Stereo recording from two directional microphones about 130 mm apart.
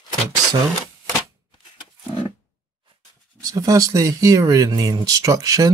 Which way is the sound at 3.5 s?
25° right (ahead or behind).